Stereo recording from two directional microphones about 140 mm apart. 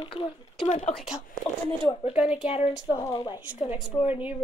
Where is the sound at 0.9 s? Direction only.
5° right (ahead or behind).